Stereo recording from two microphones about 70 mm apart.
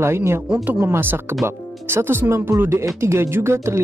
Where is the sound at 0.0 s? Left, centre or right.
Right.